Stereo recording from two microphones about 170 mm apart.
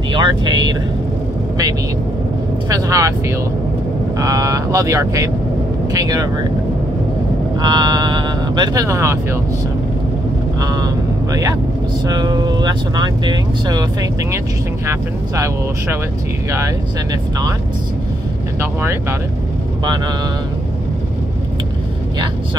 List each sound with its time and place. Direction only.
0.1 s speech: 25° right (ahead or behind)
2.7 s speech: 20° right (ahead or behind)
7.6 s speech: 25° right (ahead or behind)
10.6 s vehicle: 20° right (ahead or behind)
12.1 s speech: 25° right (ahead or behind)
14.9 s speech: 15° right (ahead or behind)
18.6 s speech: 15° right (ahead or behind)